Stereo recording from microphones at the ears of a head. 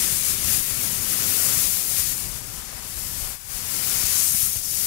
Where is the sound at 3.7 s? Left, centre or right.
Left.